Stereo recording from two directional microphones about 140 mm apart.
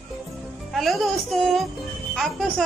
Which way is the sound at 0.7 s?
Centre (ahead or behind).